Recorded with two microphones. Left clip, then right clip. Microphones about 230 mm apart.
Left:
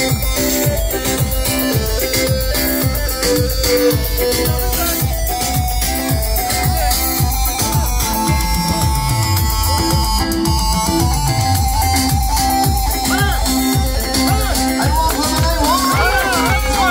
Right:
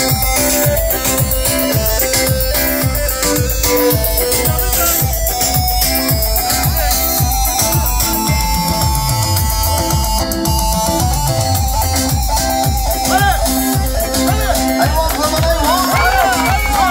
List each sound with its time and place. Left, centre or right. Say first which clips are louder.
0.0 s music: right 3 dB; right
10.4 s music: right 1 dB; right